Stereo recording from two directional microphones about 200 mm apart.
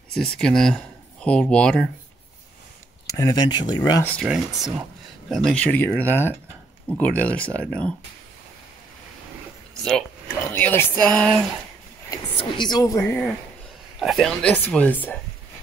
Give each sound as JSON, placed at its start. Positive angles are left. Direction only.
{"t": 0.1, "sound": "speech", "side_deg": 5}
{"t": 3.2, "sound": "speech", "side_deg": 20}
{"t": 4.0, "sound": "speech", "side_deg": 0}
{"t": 10.5, "sound": "speech", "side_deg": 10}
{"t": 12.1, "sound": "speech", "side_deg": 20}
{"t": 12.9, "sound": "speech", "side_deg": 5}